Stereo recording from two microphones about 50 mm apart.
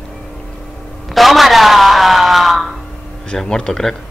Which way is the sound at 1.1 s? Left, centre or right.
Centre.